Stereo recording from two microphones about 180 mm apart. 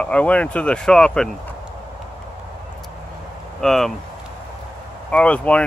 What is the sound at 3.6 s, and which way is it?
Speech, centre (ahead or behind).